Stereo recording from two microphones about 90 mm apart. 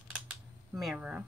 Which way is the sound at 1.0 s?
15° right (ahead or behind).